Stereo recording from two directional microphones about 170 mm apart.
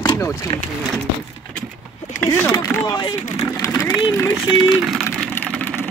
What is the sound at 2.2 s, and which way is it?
Speech, 15° left (ahead or behind).